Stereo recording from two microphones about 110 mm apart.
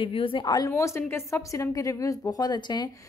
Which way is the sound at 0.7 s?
25° left (ahead or behind).